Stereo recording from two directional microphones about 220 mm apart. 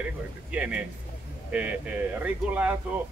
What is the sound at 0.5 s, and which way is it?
A man's voice, 5° right (ahead or behind).